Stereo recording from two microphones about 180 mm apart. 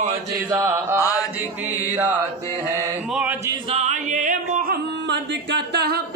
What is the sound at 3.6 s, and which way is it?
Music, 35° right (ahead or behind).